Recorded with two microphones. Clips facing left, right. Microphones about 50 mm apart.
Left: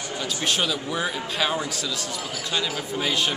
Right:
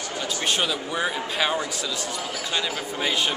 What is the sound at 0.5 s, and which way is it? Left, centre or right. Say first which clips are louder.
Speech: left 1 dB; centre.